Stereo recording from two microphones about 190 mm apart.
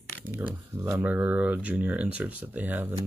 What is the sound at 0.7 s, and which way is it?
Speech, 15° right (ahead or behind).